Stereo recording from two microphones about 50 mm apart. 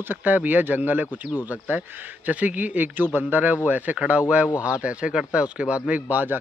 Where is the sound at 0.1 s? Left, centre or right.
Right.